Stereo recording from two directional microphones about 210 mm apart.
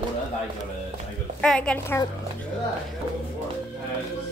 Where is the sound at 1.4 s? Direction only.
5° left (ahead or behind).